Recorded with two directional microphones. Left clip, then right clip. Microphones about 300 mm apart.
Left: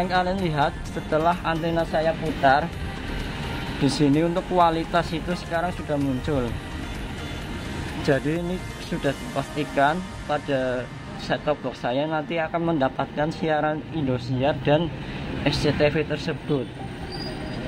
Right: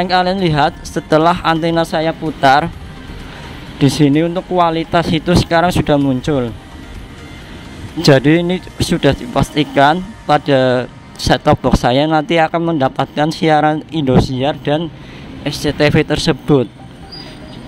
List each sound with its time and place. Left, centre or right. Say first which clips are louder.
0.0 s speech: right 10 dB; right
3.8 s speech: right 9 dB; centre
8.0 s speech: right 13 dB; right